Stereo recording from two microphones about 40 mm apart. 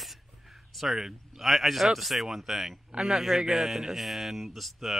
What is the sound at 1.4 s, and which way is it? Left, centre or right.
Speech, centre.